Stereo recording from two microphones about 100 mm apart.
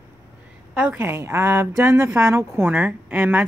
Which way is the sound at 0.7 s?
15° right (ahead or behind).